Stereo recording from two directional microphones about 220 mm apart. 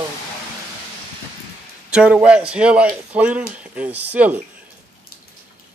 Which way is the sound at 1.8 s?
5° right (ahead or behind).